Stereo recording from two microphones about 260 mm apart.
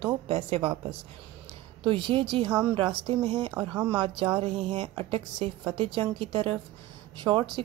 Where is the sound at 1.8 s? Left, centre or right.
Centre.